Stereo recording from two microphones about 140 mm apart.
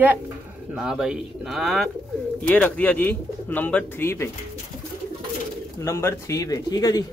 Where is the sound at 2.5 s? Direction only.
10° left (ahead or behind).